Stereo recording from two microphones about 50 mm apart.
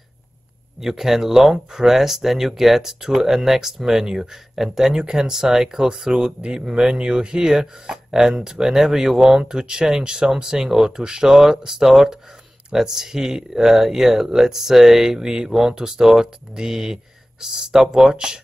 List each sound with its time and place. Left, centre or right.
0.7 s speech: centre